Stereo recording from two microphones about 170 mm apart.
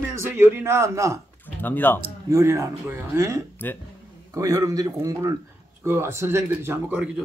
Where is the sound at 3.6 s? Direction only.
10° left (ahead or behind).